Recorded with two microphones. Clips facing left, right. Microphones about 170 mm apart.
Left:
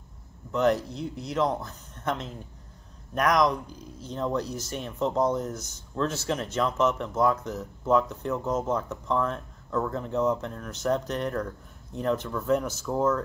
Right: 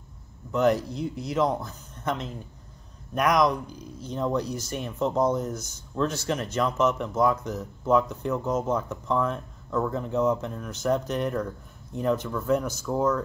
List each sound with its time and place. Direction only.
0.5 s speech: 5° right (ahead or behind)